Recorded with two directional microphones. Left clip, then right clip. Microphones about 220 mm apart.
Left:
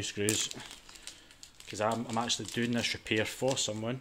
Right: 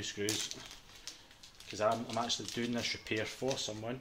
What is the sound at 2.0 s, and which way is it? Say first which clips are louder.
Speech: left 3 dB; 35° left (ahead or behind).